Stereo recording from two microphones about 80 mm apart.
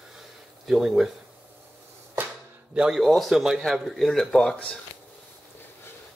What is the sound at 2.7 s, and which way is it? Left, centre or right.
Speech, centre.